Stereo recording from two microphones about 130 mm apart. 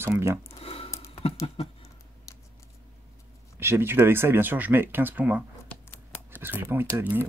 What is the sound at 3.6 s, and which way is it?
Speech, 15° right (ahead or behind).